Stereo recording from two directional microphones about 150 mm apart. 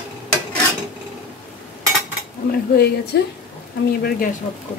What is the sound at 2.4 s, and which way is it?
Speech, 90° left.